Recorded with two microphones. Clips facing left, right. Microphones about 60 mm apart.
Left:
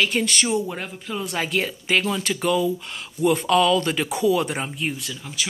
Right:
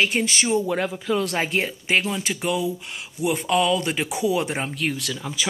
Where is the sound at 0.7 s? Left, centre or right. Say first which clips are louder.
Right 7 dB; right.